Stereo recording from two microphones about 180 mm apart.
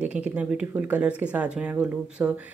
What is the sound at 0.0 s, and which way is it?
Speech, 5° right (ahead or behind).